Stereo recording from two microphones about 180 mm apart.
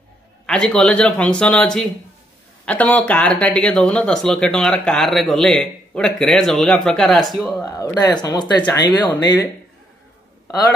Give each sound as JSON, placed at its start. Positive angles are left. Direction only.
{"t": 0.5, "sound": "speech", "side_deg": 5}
{"t": 7.6, "sound": "speech", "side_deg": 20}